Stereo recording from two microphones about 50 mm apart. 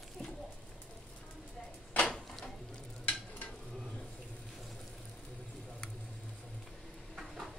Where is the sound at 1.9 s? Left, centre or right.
Left.